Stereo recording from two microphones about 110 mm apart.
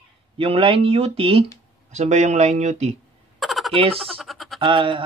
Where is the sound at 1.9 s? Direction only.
90° right.